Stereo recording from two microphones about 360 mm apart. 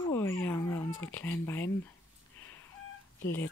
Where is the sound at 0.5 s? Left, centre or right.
Centre.